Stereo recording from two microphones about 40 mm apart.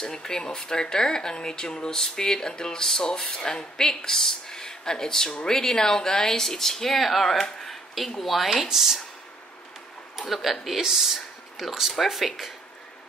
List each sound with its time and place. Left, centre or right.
0.0 s speech: centre
7.6 s a sound: centre
8.2 s speech: centre
10.1 s speech: centre